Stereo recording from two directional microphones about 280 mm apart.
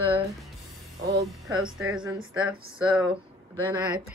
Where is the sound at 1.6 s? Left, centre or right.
Centre.